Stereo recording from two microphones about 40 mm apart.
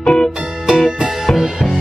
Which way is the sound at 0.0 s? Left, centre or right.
Left.